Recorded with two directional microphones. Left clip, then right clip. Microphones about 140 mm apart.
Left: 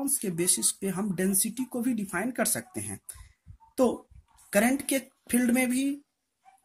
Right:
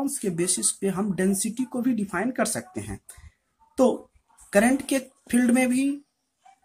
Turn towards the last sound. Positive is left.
turn(degrees=30)  # may be behind; listen again after turning